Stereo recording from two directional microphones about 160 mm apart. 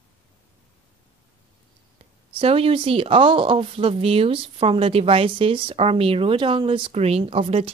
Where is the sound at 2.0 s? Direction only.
35° right (ahead or behind).